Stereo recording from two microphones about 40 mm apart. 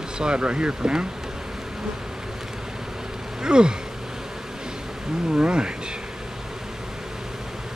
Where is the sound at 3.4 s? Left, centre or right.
Centre.